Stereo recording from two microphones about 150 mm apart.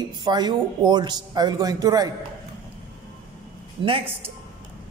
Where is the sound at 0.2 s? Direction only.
30° right (ahead or behind).